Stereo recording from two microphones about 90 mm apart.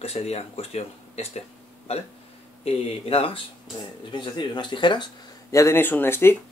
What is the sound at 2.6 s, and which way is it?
Speech, 90° left.